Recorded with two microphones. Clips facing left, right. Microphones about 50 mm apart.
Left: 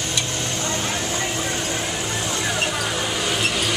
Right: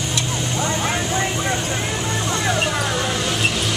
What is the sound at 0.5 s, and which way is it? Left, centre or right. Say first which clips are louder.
Vehicle: right 5 dB; right.